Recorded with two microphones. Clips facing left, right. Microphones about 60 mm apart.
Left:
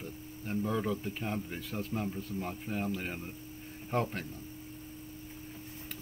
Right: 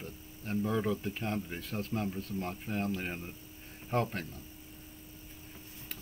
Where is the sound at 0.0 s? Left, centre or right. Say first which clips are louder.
Left 2 dB; centre.